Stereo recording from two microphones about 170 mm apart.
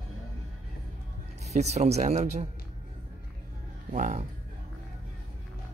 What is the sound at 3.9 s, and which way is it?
Speech, 45° right (ahead or behind).